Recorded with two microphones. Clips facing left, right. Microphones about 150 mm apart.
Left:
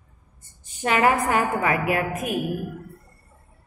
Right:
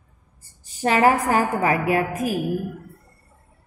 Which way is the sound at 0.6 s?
35° right (ahead or behind).